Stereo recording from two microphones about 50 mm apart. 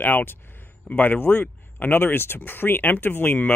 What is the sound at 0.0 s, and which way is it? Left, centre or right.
Speech, left.